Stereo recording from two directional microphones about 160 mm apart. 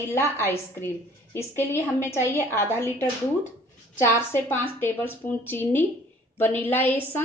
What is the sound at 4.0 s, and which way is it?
Speech, 15° left (ahead or behind).